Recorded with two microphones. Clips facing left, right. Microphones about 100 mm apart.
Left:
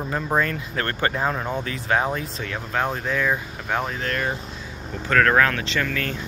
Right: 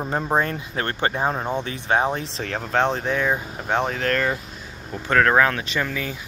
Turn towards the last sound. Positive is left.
turn(degrees=-10)  # may be behind; listen again after turning